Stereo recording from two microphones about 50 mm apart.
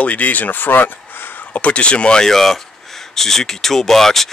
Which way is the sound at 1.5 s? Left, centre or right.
Left.